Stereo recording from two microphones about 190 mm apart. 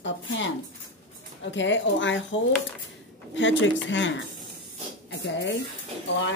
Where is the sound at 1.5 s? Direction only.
75° left (ahead or behind).